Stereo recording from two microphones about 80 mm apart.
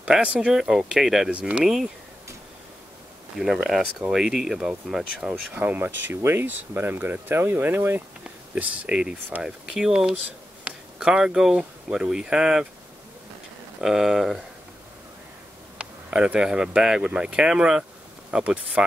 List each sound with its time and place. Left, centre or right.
0.0 s speech: centre
3.3 s speech: centre
5.5 s speech: centre
8.2 s speech: centre
13.7 s speech: centre
15.8 s speech: centre